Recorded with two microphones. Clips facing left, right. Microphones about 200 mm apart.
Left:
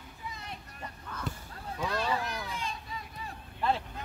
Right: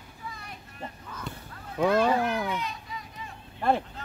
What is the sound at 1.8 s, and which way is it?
Speech, 45° right (ahead or behind).